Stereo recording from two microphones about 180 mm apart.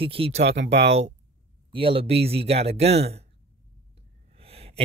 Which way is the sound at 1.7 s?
30° right (ahead or behind).